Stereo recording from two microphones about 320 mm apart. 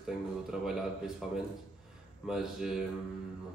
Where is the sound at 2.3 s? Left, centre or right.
Centre.